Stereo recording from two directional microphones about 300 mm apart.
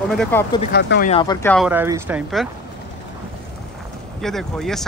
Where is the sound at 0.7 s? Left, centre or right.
Left.